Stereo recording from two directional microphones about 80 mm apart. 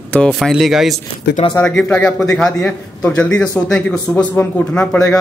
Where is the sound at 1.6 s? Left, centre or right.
Centre.